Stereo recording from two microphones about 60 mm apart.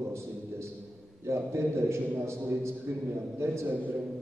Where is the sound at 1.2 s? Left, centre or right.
Right.